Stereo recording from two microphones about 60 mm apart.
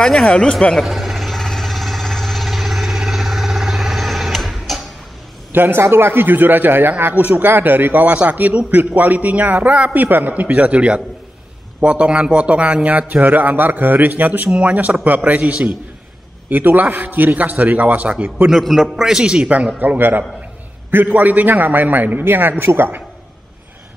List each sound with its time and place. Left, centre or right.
0.0 s speech: centre
0.8 s vehicle: centre
5.5 s a man's voice: right
10.0 s a man's voice: right
18.5 s a man's voice: centre
19.0 s a man's voice: centre
19.8 s a man's voice: right